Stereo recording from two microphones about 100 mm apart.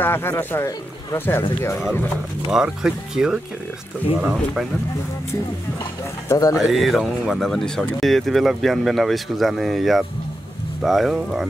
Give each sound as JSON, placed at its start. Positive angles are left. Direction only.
{"t": 0.0, "sound": "speech", "side_deg": 20}
{"t": 2.5, "sound": "speech", "side_deg": -5}
{"t": 6.2, "sound": "speech", "side_deg": 30}
{"t": 6.6, "sound": "speech", "side_deg": 0}